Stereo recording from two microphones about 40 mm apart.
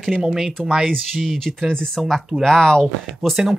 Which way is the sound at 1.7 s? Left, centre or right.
Centre.